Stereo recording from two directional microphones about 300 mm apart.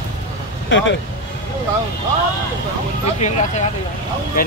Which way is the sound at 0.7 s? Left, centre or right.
Left.